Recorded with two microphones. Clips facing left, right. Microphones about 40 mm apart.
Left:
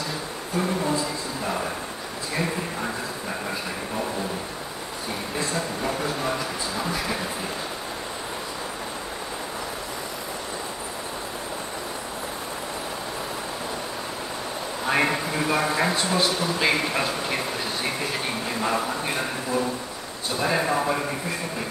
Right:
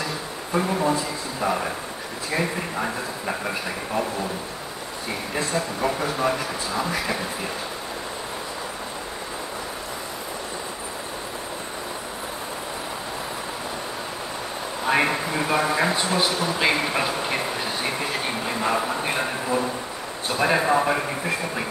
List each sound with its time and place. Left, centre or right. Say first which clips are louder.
0.6 s speech: right 2 dB; centre
2.3 s a sound: right 2 dB; right
5.5 s speech: right 5 dB; centre
14.9 s a sound: right 2 dB; centre
20.2 s a man's voice: right 3 dB; right
20.5 s speech: right 3 dB; centre